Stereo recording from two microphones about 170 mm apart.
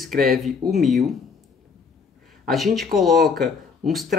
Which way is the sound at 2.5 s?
Centre (ahead or behind).